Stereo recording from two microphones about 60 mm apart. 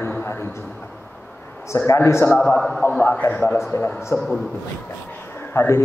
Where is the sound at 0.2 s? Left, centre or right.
Left.